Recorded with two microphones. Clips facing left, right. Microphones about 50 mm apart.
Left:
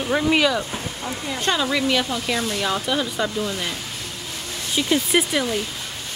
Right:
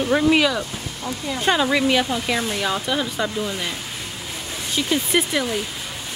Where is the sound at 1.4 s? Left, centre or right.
Centre.